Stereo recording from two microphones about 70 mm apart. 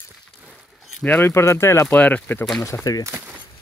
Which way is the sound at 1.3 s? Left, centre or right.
Left.